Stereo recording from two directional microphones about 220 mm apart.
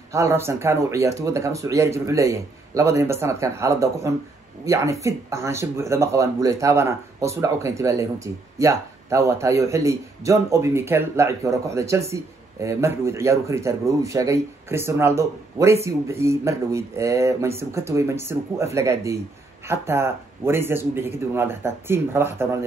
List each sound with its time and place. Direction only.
0.1 s speech: 10° right (ahead or behind)